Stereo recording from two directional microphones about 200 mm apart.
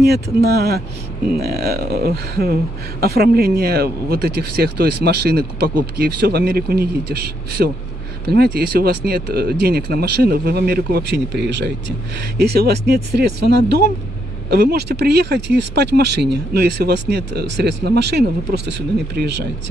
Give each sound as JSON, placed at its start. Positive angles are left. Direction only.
{"t": 0.0, "sound": "speech", "side_deg": -55}